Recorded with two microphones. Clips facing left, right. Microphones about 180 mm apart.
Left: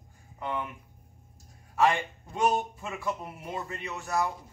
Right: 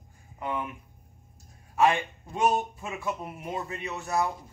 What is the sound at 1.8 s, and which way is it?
Speech, 20° right (ahead or behind).